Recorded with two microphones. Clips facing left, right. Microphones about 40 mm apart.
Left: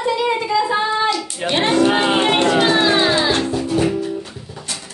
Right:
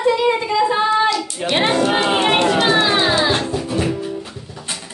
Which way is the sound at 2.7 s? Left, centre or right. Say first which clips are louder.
Even; centre.